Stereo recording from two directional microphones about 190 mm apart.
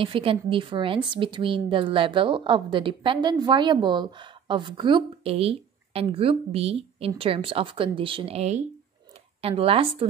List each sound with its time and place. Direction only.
0.0 s a woman's voice: 30° right (ahead or behind)